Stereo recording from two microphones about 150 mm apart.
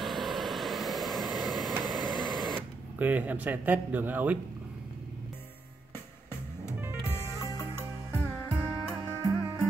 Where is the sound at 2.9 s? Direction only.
10° right (ahead or behind).